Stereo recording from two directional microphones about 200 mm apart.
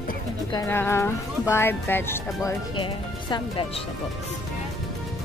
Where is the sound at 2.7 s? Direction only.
25° left (ahead or behind).